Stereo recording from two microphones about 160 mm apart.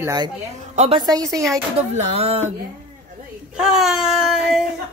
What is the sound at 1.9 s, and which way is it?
Speech, 40° right (ahead or behind).